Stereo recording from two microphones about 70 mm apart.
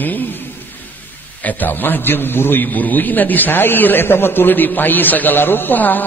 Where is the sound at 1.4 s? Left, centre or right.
Left.